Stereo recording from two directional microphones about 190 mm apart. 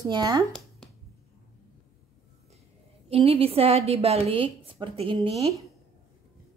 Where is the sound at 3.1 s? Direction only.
30° right (ahead or behind).